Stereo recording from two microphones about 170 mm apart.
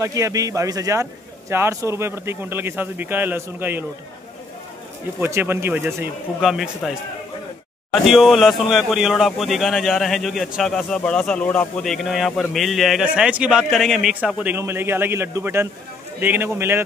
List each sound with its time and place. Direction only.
0.0 s a man's voice: 20° right (ahead or behind)
5.2 s a man's voice: 15° right (ahead or behind)
6.4 s a man's voice: 5° right (ahead or behind)
7.9 s a man's voice: centre (ahead or behind)